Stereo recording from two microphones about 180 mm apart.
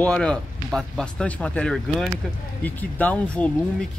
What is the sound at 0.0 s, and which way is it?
Speech, 5° left (ahead or behind).